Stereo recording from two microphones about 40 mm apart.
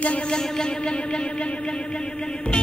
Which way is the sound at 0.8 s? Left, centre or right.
Left.